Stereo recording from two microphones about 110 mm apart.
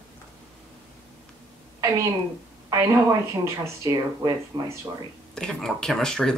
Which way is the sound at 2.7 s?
35° right (ahead or behind).